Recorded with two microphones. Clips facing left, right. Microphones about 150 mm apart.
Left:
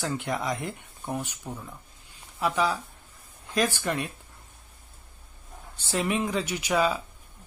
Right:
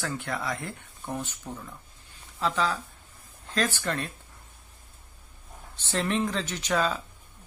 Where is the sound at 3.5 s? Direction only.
15° left (ahead or behind).